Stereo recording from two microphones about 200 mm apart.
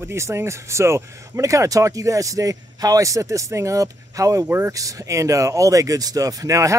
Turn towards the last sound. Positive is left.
turn(degrees=-15)  # may be behind; listen again after turning